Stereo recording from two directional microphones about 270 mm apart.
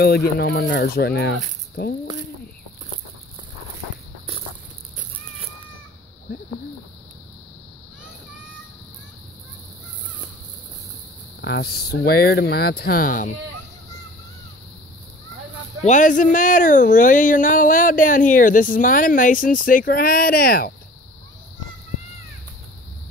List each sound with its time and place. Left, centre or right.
0.4 s speech: left
11.4 s speech: left
15.8 s speech: left